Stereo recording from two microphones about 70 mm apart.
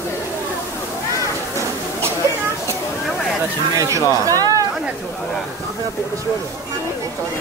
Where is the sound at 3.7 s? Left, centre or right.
Right.